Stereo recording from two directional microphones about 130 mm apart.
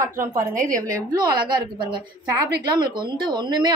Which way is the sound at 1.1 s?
35° right (ahead or behind).